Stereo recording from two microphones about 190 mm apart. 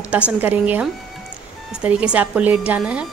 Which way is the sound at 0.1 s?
5° right (ahead or behind).